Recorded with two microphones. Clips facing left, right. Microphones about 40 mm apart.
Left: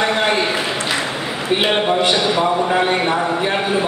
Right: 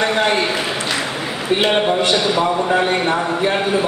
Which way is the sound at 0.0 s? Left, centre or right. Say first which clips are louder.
Even; centre.